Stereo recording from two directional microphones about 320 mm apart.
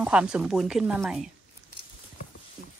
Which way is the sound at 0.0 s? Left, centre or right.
Centre.